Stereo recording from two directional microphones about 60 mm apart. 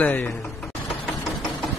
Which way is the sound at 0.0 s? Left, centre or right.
Left.